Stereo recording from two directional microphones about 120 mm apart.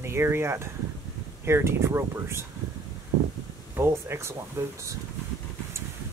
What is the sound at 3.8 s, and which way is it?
Speech, 20° right (ahead or behind).